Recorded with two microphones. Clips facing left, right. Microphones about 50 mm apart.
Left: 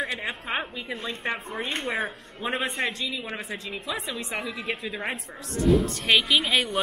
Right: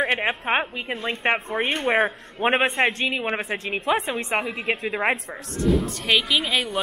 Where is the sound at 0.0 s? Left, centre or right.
Right.